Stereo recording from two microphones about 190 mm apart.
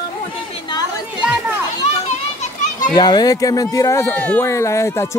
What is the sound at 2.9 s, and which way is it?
Speech, 20° left (ahead or behind).